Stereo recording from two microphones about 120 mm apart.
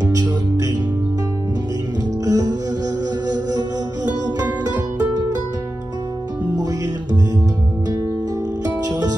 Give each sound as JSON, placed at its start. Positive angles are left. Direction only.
{"t": 0.0, "sound": "music", "side_deg": -30}
{"t": 2.2, "sound": "music", "side_deg": -30}